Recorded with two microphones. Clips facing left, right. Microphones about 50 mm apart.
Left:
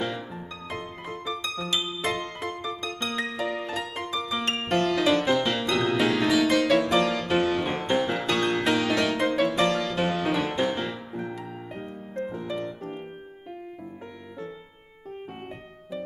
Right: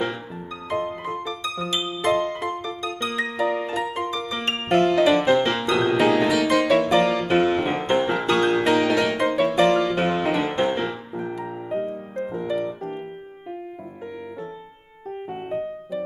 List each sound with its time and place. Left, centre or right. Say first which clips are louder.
0.7 s music: right 11 dB; right
6.2 s music: right 2 dB; centre
9.7 s music: right 6 dB; right
12.2 s piano: right 5 dB; centre